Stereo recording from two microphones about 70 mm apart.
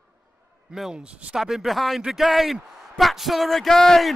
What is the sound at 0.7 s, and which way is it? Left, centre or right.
Speech, centre.